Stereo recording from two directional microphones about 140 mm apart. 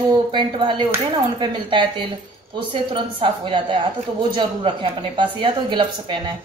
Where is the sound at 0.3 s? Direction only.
35° right (ahead or behind).